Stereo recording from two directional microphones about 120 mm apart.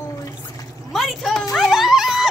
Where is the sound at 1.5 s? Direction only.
Centre (ahead or behind).